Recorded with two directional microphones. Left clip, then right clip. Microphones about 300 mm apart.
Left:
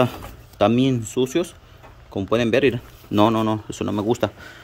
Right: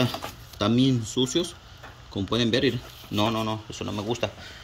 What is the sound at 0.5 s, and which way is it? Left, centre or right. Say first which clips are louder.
Speech: left 6 dB; centre.